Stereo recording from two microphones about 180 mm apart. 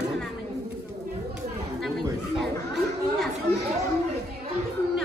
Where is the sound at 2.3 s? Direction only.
Centre (ahead or behind).